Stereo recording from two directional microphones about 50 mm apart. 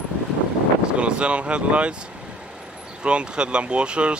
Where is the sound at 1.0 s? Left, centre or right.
Right.